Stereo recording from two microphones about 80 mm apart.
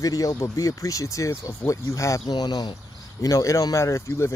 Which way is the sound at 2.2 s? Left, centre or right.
Left.